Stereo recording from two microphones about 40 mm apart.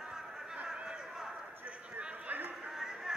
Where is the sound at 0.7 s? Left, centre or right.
Centre.